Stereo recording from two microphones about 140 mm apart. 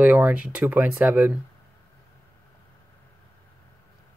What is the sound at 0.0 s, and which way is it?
Speech, 10° right (ahead or behind).